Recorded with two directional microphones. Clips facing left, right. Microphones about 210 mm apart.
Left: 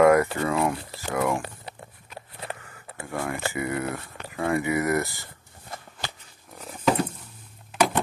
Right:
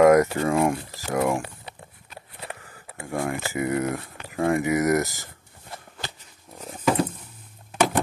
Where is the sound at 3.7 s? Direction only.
40° right (ahead or behind).